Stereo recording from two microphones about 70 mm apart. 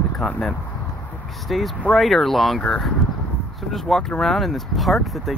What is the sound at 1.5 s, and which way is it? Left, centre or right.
Speech, centre.